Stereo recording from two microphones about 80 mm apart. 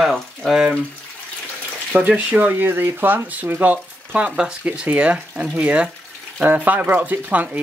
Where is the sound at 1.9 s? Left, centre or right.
Centre.